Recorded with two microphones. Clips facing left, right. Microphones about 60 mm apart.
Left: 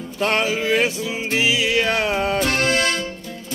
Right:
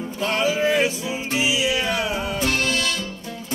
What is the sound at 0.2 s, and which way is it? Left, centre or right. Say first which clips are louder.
Music: left 3 dB; left.